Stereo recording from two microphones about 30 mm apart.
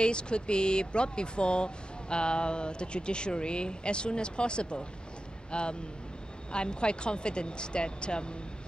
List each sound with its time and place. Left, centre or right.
0.0 s speech: left